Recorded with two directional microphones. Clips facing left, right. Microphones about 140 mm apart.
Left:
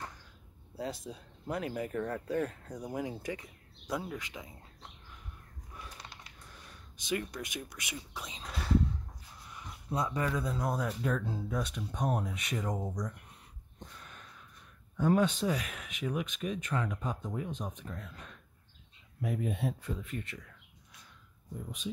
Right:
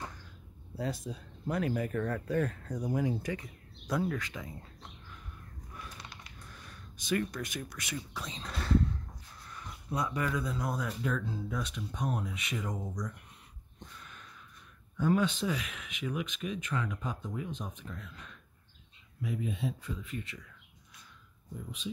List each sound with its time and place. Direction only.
0.7 s speech: 20° left (ahead or behind)
5.8 s a sound: 30° left (ahead or behind)
9.9 s speech: 25° left (ahead or behind)
13.9 s a sound: 40° left (ahead or behind)
15.0 s speech: 40° left (ahead or behind)
19.2 s speech: 55° left (ahead or behind)